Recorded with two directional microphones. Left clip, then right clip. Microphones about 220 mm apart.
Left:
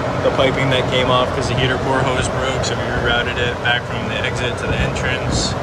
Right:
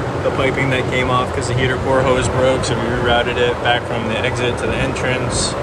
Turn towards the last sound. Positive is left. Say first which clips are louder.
# right 1 dB
turn(degrees=5)  # may be behind; listen again after turning